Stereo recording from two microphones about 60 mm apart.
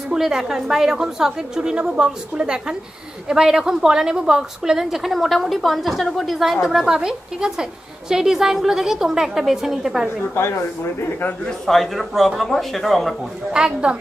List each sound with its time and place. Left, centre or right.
0.1 s a woman's voice: centre
10.3 s speech: left
11.1 s a man's voice: left
11.4 s speech: centre
13.5 s a woman's voice: centre